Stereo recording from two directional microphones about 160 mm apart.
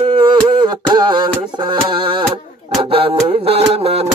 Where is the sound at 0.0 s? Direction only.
30° right (ahead or behind).